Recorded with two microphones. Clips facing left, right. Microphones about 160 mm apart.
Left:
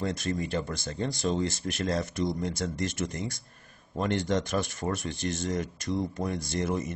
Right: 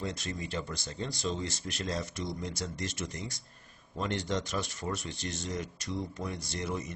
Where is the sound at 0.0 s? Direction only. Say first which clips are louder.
Left 7 dB; 50° left (ahead or behind).